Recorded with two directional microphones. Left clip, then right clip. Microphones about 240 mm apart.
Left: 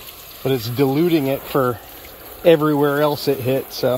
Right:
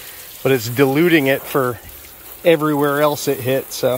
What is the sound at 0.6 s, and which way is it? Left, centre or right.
Speech, centre.